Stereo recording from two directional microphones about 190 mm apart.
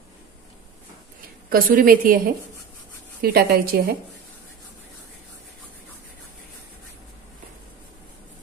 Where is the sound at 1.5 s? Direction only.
50° right (ahead or behind).